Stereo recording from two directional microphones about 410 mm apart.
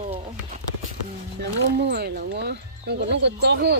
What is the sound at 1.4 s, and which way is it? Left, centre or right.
Speech, right.